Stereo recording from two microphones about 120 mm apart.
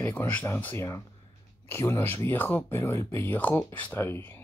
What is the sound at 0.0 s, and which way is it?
Speech, 15° left (ahead or behind).